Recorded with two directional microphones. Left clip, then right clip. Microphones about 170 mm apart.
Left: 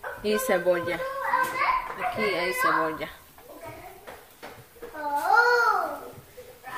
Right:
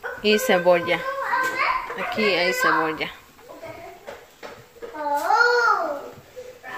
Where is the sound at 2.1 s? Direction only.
15° right (ahead or behind).